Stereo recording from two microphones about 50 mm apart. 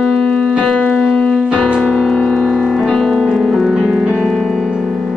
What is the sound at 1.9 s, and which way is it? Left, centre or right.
Music, centre.